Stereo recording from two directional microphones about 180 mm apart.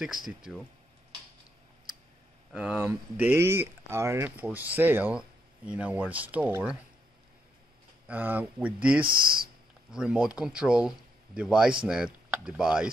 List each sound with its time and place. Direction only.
0.0 s speech: centre (ahead or behind)
2.5 s speech: 10° right (ahead or behind)
8.1 s speech: 10° right (ahead or behind)
9.0 s speech: 55° right (ahead or behind)
9.8 s speech: 5° right (ahead or behind)